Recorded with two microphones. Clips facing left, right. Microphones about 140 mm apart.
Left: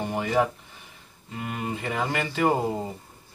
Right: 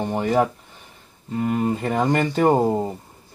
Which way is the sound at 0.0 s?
35° right (ahead or behind).